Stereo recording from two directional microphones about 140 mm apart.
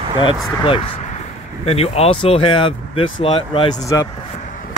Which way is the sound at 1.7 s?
45° left (ahead or behind).